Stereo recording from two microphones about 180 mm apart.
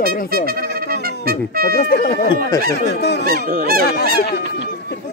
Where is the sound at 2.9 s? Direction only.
70° left (ahead or behind).